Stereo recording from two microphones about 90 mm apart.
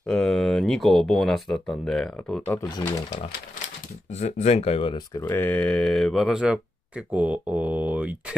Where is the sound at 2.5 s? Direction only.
25° left (ahead or behind).